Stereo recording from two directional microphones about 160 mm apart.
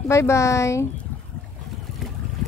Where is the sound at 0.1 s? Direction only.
20° left (ahead or behind).